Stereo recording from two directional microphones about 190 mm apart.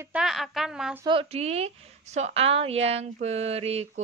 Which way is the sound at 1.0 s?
30° right (ahead or behind).